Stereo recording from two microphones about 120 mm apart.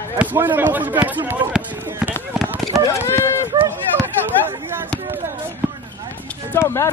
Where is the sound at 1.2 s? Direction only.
15° right (ahead or behind).